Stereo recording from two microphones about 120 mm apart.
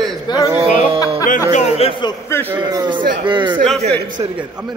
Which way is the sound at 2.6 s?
35° right (ahead or behind).